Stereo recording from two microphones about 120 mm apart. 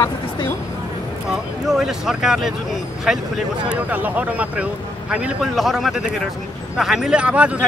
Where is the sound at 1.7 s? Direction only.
5° right (ahead or behind).